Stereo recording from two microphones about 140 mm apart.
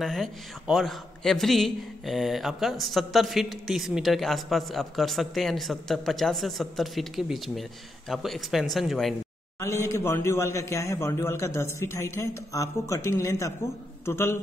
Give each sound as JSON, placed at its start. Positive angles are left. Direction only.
{"t": 0.0, "sound": "a man's voice", "side_deg": 0}
{"t": 9.6, "sound": "a man's voice", "side_deg": 20}